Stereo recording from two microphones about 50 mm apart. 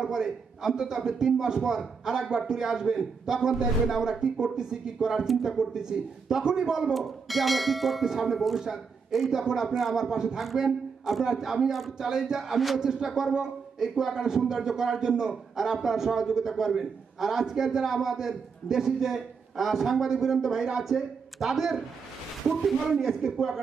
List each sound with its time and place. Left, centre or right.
0.0 s speech: centre
5.2 s a man's voice: centre
5.7 s a man's voice: centre